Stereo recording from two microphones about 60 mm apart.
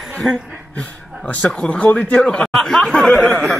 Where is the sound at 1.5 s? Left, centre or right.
Left.